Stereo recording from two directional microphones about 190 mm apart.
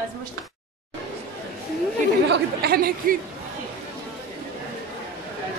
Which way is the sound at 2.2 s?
60° right (ahead or behind).